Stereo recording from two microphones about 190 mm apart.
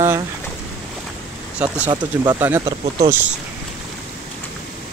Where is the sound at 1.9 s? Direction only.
20° right (ahead or behind).